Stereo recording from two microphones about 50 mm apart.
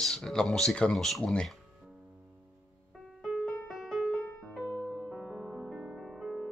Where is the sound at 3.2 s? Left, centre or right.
Centre.